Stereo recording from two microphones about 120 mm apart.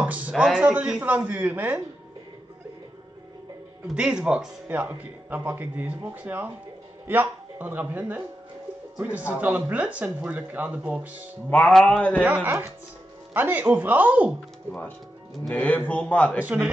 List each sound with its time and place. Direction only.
0.0 s a man's voice: 10° right (ahead or behind)
3.8 s speech: 5° right (ahead or behind)
11.5 s a man's voice: 10° left (ahead or behind)
12.2 s speech: 15° right (ahead or behind)
14.7 s a man's voice: 15° left (ahead or behind)
16.4 s speech: 10° right (ahead or behind)